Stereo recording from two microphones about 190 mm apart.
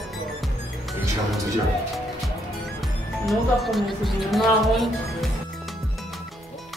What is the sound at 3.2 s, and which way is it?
Speech, centre (ahead or behind).